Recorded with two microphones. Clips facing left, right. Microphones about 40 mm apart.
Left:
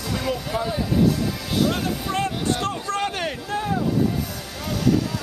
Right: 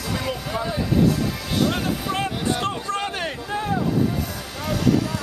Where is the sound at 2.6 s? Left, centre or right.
Right.